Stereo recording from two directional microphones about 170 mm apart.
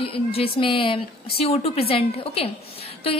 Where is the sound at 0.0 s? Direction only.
35° left (ahead or behind).